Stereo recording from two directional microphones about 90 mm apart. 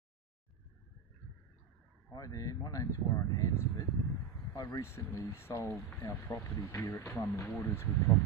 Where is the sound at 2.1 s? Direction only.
40° left (ahead or behind).